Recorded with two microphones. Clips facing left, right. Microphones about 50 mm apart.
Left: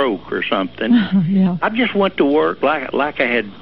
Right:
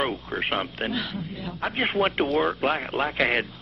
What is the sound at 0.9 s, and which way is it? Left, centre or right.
Speech, left.